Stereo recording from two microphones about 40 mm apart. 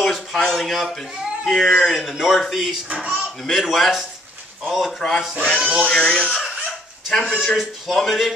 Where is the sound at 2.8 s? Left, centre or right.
Right.